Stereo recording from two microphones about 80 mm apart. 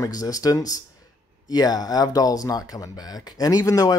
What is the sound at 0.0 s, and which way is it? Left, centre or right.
Speech, left.